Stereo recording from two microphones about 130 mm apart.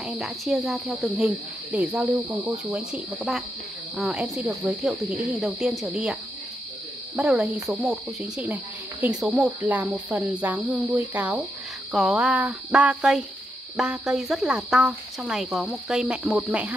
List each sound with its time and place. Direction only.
0.0 s cricket: centre (ahead or behind)
7.2 s cricket: 5° right (ahead or behind)
9.6 s cricket: 10° right (ahead or behind)